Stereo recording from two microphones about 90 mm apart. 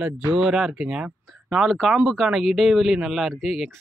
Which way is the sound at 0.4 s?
5° right (ahead or behind).